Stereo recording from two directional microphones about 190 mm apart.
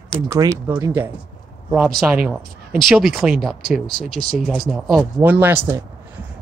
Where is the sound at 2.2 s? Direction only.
5° right (ahead or behind).